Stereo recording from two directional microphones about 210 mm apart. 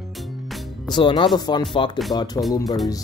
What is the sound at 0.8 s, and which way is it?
Speech, 20° left (ahead or behind).